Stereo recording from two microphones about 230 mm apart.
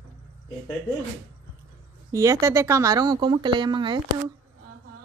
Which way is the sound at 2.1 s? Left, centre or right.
Centre.